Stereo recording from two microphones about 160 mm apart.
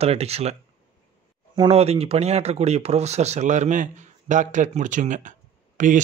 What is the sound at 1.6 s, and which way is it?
Speech, 40° right (ahead or behind).